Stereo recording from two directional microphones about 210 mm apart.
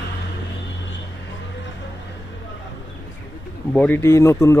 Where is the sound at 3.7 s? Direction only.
10° left (ahead or behind).